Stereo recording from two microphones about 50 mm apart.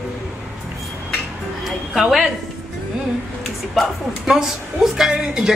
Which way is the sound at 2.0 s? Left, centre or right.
Centre.